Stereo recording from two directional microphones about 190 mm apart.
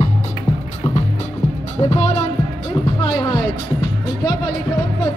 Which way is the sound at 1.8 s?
35° left (ahead or behind).